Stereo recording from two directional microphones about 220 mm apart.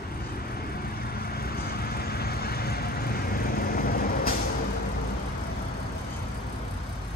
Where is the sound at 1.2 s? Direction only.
45° left (ahead or behind).